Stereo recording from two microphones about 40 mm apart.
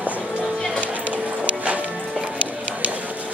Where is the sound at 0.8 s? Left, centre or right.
Right.